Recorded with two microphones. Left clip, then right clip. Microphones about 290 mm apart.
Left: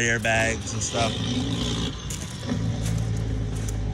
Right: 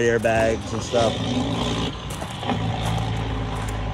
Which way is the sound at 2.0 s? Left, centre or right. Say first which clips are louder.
Right 4 dB; centre.